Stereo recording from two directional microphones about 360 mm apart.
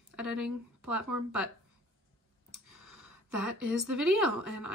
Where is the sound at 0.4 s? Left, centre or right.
Right.